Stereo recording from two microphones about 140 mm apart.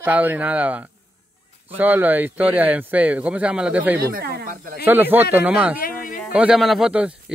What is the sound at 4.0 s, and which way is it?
Speech, 90° right.